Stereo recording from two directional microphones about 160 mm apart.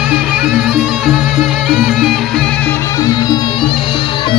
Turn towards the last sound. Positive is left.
turn(degrees=25)  # may be behind; listen again after turning